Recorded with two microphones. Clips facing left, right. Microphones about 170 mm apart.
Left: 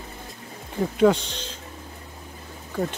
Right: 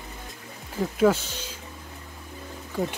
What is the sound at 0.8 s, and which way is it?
Speech, 5° right (ahead or behind).